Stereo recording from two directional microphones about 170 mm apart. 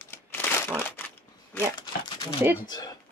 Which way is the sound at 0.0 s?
10° left (ahead or behind).